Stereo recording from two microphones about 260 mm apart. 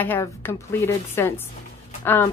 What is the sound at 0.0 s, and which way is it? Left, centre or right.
Speech, centre.